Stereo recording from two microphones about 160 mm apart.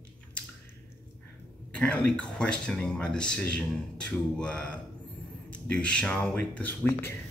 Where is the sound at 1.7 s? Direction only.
5° left (ahead or behind).